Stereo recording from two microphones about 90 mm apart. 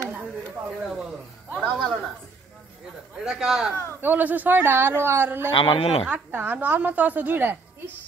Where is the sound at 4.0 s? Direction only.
20° right (ahead or behind).